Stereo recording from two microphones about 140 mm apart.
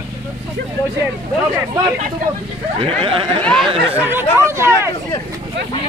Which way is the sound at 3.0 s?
40° right (ahead or behind).